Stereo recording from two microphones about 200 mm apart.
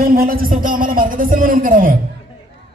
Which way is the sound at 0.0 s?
45° right (ahead or behind).